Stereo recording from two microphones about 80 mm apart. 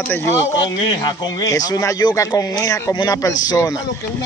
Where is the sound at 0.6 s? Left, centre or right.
Left.